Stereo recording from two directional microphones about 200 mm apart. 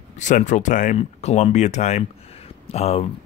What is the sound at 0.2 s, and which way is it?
Speech, 35° left (ahead or behind).